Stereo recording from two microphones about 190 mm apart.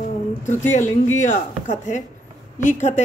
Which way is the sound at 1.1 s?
40° left (ahead or behind).